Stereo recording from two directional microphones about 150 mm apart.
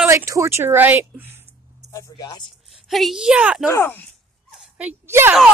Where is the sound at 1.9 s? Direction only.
20° left (ahead or behind).